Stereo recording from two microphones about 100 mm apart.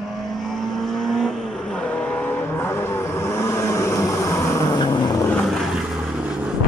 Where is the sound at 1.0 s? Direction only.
5° left (ahead or behind).